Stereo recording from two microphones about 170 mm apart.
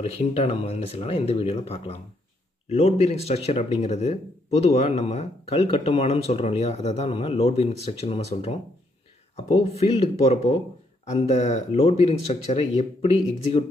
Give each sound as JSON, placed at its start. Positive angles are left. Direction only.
{"t": 0.2, "sound": "speech", "side_deg": 35}